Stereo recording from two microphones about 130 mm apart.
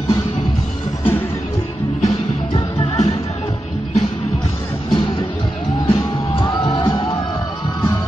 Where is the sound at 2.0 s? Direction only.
60° left (ahead or behind).